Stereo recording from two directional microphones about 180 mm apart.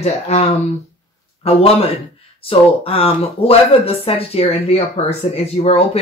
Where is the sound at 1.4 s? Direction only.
35° left (ahead or behind).